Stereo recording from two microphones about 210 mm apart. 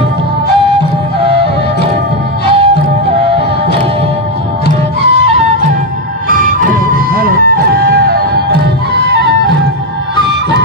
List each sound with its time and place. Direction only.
1.2 s music: 25° right (ahead or behind)
2.5 s music: 25° right (ahead or behind)
6.3 s music: 40° right (ahead or behind)